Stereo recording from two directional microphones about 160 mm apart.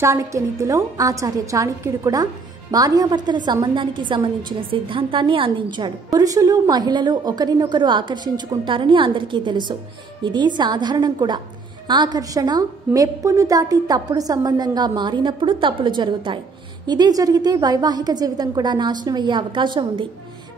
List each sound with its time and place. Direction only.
0.0 s a woman's voice: 20° right (ahead or behind)